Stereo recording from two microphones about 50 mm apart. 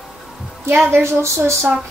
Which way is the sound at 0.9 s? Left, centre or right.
Right.